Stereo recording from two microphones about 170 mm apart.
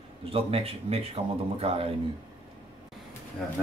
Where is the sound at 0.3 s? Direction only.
35° right (ahead or behind).